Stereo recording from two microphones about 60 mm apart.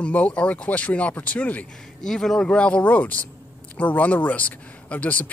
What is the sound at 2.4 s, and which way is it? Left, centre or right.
Speech, centre.